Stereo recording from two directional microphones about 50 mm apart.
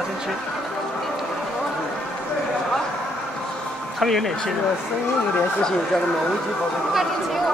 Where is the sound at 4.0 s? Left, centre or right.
Centre.